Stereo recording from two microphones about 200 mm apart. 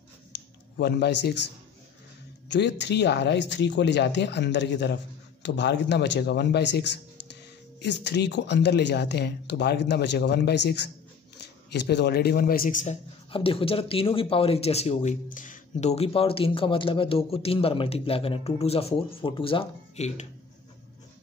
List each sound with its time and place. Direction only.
0.3 s a sound: 60° left (ahead or behind)
0.7 s speech: 55° left (ahead or behind)
2.5 s a man's voice: 60° left (ahead or behind); by 12.9 s 40° left (ahead or behind)
13.3 s speech: 25° left (ahead or behind)